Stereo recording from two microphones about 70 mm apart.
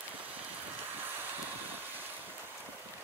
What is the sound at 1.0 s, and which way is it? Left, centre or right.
Vehicle, right.